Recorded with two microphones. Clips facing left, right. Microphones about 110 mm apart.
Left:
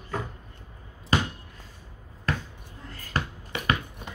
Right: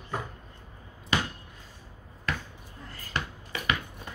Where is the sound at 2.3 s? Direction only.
35° left (ahead or behind).